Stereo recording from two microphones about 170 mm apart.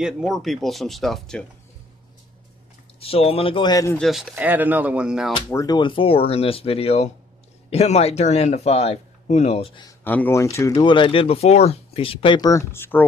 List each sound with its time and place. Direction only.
0.0 s speech: centre (ahead or behind)
3.0 s speech: 35° left (ahead or behind)
3.9 s speech: centre (ahead or behind)
5.5 s speech: 20° left (ahead or behind)
9.8 s speech: 10° left (ahead or behind)